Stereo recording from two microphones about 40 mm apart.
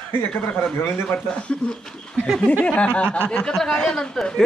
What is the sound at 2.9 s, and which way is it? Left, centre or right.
Speech, left.